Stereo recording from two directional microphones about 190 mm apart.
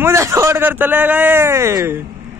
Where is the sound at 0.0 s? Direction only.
15° right (ahead or behind).